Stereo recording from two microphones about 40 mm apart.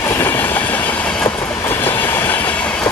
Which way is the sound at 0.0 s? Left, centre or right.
Left.